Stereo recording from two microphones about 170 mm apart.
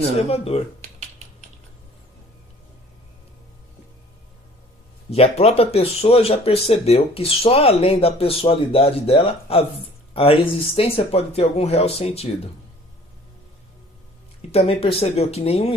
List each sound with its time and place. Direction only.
0.3 s speech: 35° left (ahead or behind)
5.1 s speech: 35° left (ahead or behind)
14.5 s speech: 35° left (ahead or behind)